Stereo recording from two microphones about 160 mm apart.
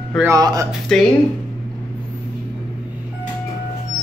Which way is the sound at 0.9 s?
5° left (ahead or behind).